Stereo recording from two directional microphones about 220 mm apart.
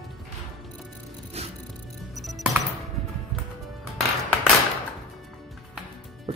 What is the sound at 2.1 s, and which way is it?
Music, centre (ahead or behind).